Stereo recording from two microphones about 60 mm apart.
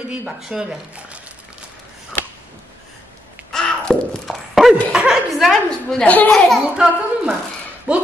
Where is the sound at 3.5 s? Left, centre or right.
Centre.